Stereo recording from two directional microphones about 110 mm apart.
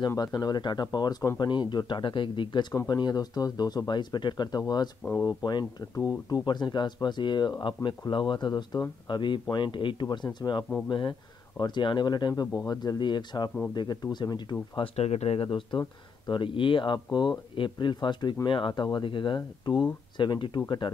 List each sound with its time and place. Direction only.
0.1 s speech: 35° left (ahead or behind)
15.0 s speech: 75° left (ahead or behind)
15.4 s speech: 45° left (ahead or behind)